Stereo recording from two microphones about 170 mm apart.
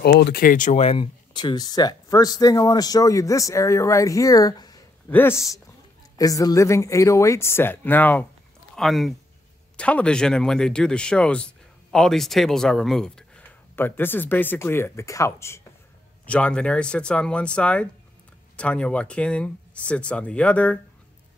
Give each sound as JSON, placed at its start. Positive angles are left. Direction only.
{"t": 0.0, "sound": "speech", "side_deg": 70}